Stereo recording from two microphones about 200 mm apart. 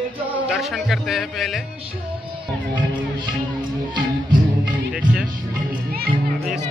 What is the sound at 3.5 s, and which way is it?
Speech, 20° right (ahead or behind).